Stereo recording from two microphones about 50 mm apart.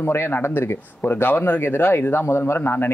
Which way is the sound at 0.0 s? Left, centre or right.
Left.